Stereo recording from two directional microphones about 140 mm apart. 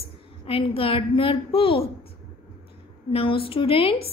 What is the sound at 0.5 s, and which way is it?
A woman's voice, 40° left (ahead or behind).